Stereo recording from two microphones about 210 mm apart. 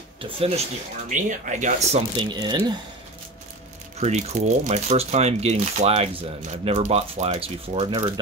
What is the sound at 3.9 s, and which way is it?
Speech, 30° right (ahead or behind).